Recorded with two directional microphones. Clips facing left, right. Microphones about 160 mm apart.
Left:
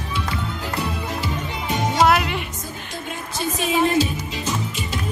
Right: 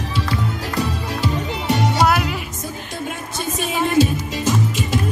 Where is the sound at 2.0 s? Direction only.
Centre (ahead or behind).